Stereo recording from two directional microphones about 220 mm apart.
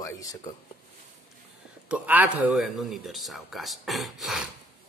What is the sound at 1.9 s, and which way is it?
A man's voice, 5° right (ahead or behind).